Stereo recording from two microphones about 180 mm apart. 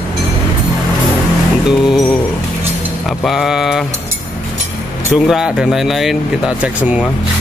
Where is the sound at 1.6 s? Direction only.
Centre (ahead or behind).